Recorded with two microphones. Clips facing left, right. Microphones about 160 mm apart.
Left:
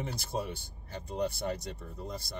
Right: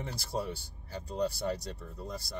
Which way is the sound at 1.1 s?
20° left (ahead or behind).